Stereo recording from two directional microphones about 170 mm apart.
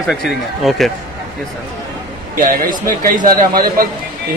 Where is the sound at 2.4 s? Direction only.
55° right (ahead or behind).